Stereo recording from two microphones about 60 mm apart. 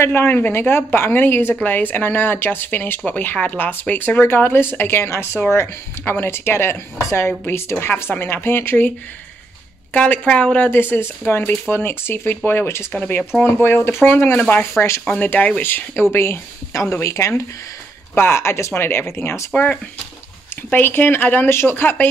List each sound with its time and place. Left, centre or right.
0.0 s speech: left
9.9 s speech: left
10.7 s speech: left
15.6 s speech: left
16.9 s speech: left
18.1 s speech: left
20.7 s speech: left